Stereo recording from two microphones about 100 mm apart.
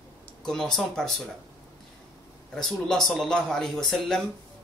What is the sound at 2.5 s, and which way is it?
Speech, 5° left (ahead or behind).